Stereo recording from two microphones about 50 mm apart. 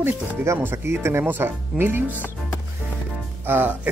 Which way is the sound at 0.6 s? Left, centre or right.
Right.